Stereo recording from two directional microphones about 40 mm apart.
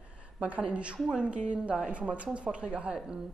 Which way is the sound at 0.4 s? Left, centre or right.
Right.